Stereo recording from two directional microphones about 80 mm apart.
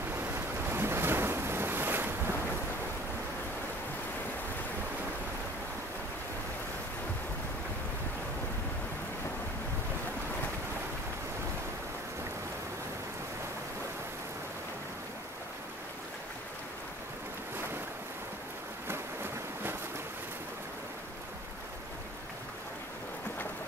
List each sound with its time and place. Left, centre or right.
0.1 s waves: right